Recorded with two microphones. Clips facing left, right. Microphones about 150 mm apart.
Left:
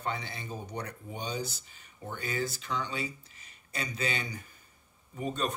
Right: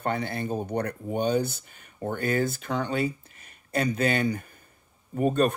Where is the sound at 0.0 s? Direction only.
55° right (ahead or behind).